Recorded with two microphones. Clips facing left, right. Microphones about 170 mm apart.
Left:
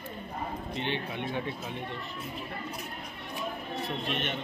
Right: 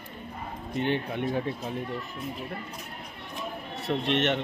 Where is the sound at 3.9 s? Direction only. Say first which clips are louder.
Right 10 dB; 75° right (ahead or behind).